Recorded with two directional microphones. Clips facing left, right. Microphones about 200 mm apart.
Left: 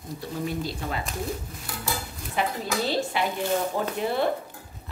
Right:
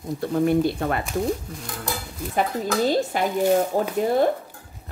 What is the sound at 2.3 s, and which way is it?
Speech, 45° right (ahead or behind).